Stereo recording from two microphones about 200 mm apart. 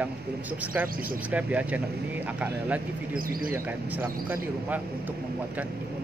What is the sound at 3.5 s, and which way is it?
Speech, 10° right (ahead or behind).